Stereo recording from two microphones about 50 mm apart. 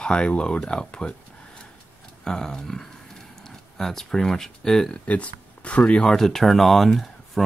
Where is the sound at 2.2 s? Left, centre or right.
Centre.